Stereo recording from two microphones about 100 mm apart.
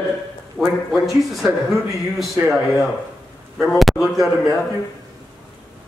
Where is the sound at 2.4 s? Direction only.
25° right (ahead or behind).